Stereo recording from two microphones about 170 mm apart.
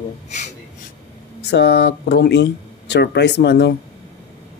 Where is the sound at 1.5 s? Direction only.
75° left (ahead or behind).